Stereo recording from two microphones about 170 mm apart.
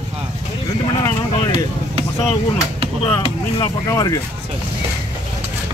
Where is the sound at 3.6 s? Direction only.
20° left (ahead or behind).